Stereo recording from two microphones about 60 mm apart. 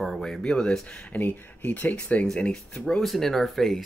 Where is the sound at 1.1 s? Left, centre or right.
Left.